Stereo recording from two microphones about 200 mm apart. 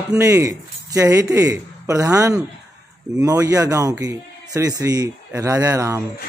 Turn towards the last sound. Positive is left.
turn(degrees=-15)  # may be behind; listen again after turning